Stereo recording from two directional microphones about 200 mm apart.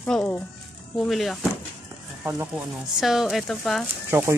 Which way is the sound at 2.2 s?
15° right (ahead or behind).